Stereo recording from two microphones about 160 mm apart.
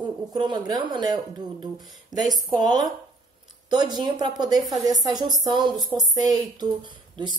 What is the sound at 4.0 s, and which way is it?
Speech, 25° right (ahead or behind).